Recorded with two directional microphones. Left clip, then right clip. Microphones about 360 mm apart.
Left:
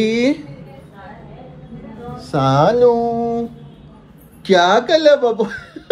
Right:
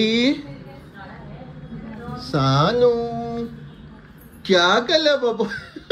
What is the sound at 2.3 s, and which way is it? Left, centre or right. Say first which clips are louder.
Speech: left 5 dB; centre.